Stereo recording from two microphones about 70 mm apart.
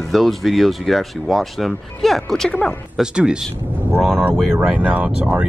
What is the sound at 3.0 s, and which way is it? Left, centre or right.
Speech, centre.